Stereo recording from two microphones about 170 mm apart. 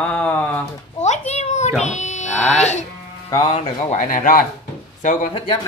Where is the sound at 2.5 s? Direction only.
40° left (ahead or behind).